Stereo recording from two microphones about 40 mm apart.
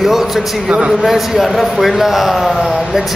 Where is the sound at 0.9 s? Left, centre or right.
Centre.